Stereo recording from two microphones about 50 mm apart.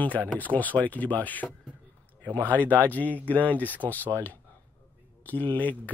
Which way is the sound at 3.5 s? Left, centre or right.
Left.